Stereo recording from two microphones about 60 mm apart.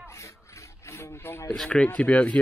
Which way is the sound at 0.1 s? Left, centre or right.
Left.